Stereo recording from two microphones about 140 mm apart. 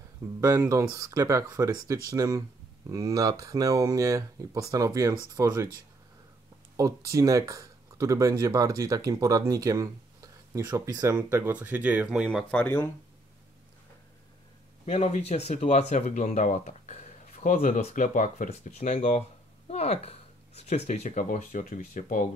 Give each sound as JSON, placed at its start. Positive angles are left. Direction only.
{"t": 0.4, "sound": "speech", "side_deg": -20}
{"t": 6.8, "sound": "speech", "side_deg": -25}
{"t": 12.4, "sound": "speech", "side_deg": 10}
{"t": 14.9, "sound": "speech", "side_deg": 50}